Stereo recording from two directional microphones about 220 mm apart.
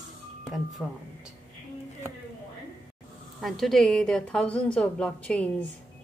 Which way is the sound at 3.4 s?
Centre (ahead or behind).